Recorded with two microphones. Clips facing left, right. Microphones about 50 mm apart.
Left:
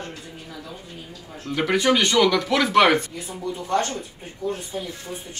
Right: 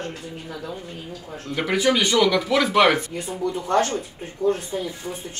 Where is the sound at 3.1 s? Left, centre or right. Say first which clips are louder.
Right 4 dB; right.